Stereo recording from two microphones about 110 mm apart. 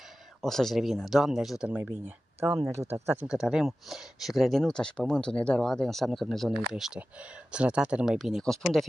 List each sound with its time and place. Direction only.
0.4 s speech: 5° left (ahead or behind)
1.7 s speech: 15° right (ahead or behind)
3.3 s speech: 5° right (ahead or behind)